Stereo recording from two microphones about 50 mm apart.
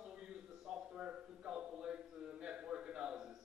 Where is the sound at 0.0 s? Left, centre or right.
Centre.